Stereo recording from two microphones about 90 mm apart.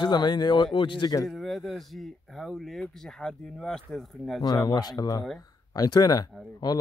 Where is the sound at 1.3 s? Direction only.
Centre (ahead or behind).